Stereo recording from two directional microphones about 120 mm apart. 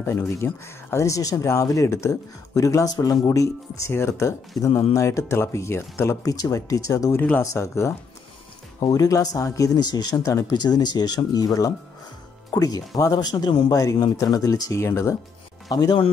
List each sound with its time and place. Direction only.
0.0 s speech: 20° left (ahead or behind)
7.2 s speech: 15° left (ahead or behind)
8.7 s speech: 35° left (ahead or behind)
15.7 s speech: 35° left (ahead or behind)